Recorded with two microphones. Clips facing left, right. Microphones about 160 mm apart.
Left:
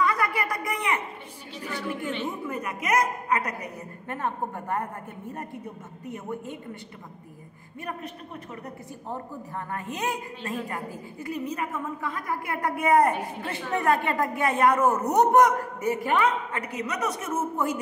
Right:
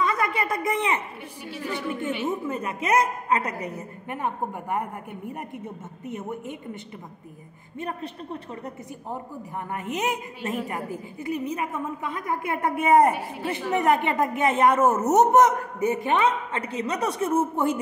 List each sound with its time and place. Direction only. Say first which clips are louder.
0.0 s a sound: right 1 dB; 25° right (ahead or behind)
1.7 s a woman's voice: right 2 dB; 25° right (ahead or behind)
6.0 s a woman's voice: right 2 dB; 20° right (ahead or behind)
9.7 s a woman's voice: right 3 dB; 20° right (ahead or behind)